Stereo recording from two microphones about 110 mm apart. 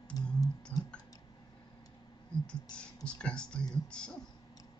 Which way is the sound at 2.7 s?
10° left (ahead or behind).